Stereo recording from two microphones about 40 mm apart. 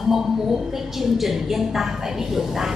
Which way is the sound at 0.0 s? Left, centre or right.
Centre.